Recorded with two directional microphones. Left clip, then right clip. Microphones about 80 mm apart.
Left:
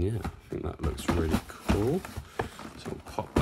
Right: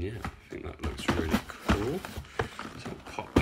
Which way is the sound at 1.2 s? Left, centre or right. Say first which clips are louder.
Even; centre.